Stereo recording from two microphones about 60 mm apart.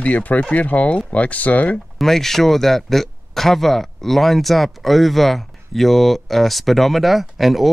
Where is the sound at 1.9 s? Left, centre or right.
Centre.